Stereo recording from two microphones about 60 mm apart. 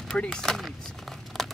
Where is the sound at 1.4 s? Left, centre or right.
Centre.